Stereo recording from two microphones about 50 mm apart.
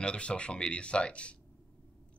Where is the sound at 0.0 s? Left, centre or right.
Centre.